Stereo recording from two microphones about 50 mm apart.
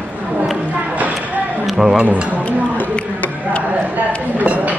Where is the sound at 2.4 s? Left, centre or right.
Left.